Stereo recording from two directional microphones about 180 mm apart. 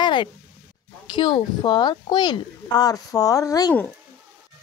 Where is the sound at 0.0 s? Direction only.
25° left (ahead or behind).